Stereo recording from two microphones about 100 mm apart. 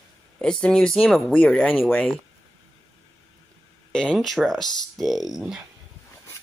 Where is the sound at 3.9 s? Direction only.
5° left (ahead or behind).